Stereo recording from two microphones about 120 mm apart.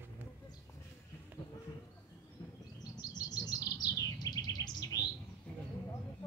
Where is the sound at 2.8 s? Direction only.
35° left (ahead or behind).